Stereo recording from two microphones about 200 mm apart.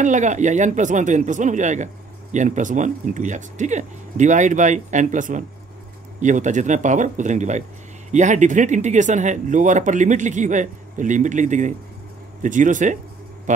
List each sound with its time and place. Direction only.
0.0 s speech: 40° right (ahead or behind)